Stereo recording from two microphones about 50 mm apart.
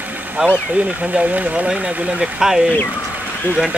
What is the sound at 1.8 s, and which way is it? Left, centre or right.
Speech, centre.